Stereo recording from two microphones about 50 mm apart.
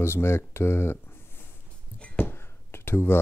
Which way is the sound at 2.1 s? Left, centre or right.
Left.